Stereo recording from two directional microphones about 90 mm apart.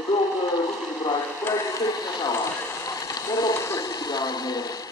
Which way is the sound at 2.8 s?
40° left (ahead or behind).